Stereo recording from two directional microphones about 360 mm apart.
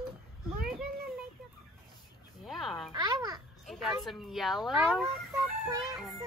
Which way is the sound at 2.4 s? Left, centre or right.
Centre.